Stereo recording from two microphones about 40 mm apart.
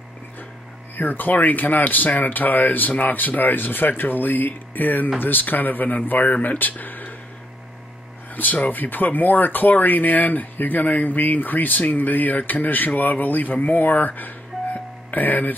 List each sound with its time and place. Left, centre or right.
0.9 s speech: left
8.4 s speech: left